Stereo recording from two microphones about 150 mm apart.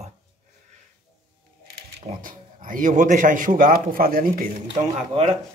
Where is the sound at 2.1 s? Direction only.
65° right (ahead or behind).